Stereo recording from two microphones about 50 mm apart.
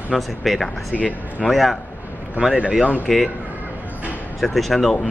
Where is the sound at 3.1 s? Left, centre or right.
Centre.